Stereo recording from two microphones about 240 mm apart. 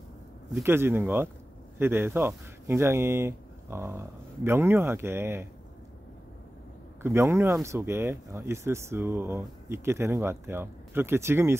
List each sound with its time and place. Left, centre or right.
0.6 s speech: centre
7.0 s speech: centre